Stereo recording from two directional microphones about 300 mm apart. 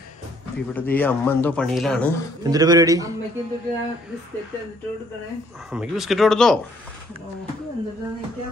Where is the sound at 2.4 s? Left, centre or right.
Centre.